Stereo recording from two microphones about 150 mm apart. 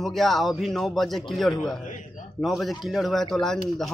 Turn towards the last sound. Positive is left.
turn(degrees=0)  # may be behind; listen again after turning